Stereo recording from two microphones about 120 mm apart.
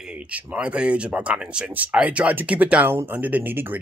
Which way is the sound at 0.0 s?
10° right (ahead or behind).